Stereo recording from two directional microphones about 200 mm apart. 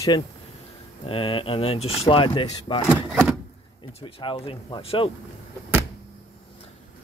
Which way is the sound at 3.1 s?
5° right (ahead or behind).